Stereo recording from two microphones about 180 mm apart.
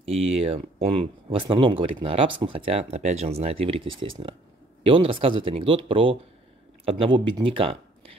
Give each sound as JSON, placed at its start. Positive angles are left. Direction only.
{"t": 0.0, "sound": "speech", "side_deg": -35}